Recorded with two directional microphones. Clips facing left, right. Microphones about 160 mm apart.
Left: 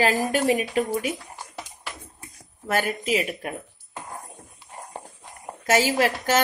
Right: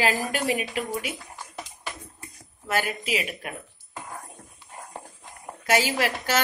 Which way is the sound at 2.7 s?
50° left (ahead or behind).